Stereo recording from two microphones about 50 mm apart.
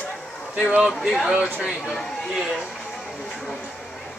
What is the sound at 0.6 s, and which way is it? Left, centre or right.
Speech, centre.